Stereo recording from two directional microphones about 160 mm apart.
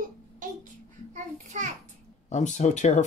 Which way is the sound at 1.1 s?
50° right (ahead or behind).